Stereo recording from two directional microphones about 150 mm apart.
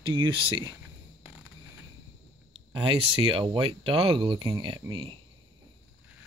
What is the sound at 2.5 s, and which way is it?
Speech, 35° right (ahead or behind).